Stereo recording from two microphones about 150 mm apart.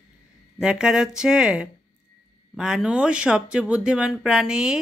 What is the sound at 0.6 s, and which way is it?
Speech, 5° right (ahead or behind).